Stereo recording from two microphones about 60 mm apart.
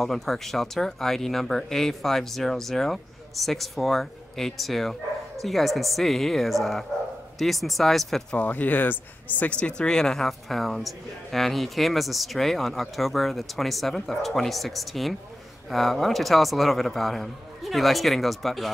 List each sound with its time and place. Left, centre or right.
0.0 s speech: centre
8.3 s speech: left
9.5 s speech: centre